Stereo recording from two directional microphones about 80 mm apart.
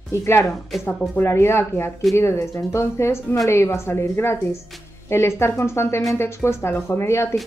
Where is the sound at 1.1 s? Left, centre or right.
Left.